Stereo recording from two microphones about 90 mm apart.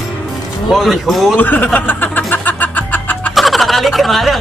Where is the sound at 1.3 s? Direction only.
20° left (ahead or behind).